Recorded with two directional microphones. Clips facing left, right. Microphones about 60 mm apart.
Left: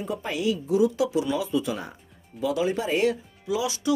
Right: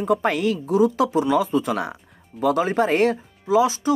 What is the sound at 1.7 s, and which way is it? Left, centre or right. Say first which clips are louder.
Speech: right 7 dB; right.